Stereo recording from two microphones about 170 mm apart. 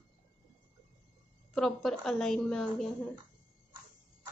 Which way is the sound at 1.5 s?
5° left (ahead or behind).